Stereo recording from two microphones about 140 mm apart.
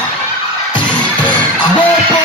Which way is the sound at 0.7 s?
35° left (ahead or behind).